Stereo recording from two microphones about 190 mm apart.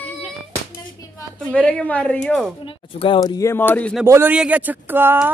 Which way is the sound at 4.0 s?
10° right (ahead or behind).